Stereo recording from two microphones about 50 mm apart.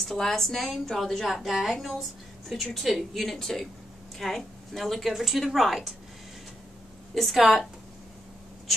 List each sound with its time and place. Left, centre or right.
0.0 s a woman's voice: centre
1.3 s a woman's voice: centre
7.2 s a woman's voice: centre